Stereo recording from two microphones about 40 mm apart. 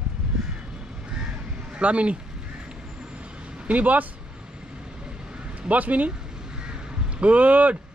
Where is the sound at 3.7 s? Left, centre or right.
Right.